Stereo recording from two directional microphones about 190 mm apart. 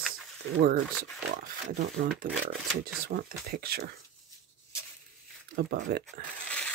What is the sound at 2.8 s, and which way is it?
Speech, 55° right (ahead or behind).